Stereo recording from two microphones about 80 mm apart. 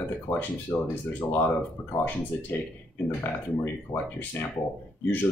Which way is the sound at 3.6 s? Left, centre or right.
Left.